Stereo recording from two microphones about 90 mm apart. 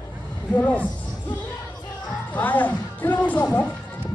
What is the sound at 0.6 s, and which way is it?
Speech, 15° left (ahead or behind).